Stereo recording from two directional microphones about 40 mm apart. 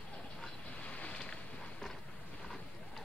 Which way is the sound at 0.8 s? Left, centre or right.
Left.